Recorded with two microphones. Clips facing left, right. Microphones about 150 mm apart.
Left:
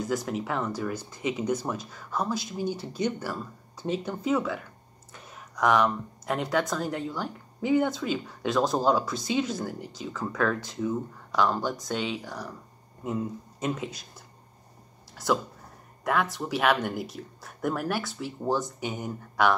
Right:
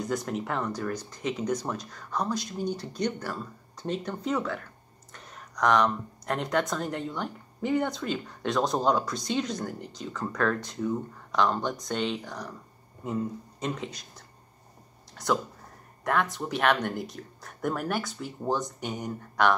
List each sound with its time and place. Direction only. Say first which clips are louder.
0.0 s speech: left 1 dB; centre (ahead or behind)